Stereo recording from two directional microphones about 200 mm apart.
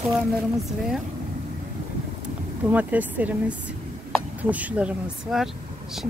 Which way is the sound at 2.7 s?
10° right (ahead or behind).